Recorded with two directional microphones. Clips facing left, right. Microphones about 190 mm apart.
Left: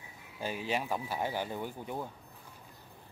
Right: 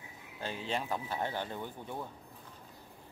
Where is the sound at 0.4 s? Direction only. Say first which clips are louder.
Left 2 dB; 10° left (ahead or behind).